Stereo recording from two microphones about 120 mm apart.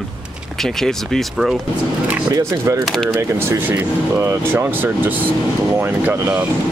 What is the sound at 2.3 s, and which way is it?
Speech, 25° right (ahead or behind).